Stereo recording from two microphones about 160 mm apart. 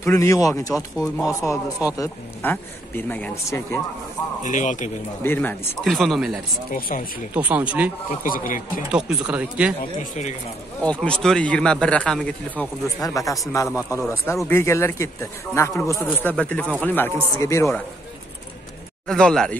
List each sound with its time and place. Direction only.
0.0 s speech: 20° left (ahead or behind)
4.4 s speech: 50° left (ahead or behind)
5.2 s speech: 10° left (ahead or behind)
5.9 s speech: centre (ahead or behind)
6.7 s speech: 60° left (ahead or behind)
7.3 s speech: 10° right (ahead or behind)
8.2 s speech: 55° left (ahead or behind)
8.9 s speech: 10° right (ahead or behind)
10.8 s speech: 5° left (ahead or behind)
13.0 s speech: 20° left (ahead or behind)
19.0 s speech: 5° left (ahead or behind)